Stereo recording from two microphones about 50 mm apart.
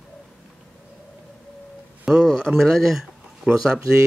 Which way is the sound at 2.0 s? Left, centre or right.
Centre.